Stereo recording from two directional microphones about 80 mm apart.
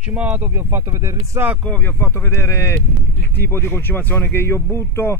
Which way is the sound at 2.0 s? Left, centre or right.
Left.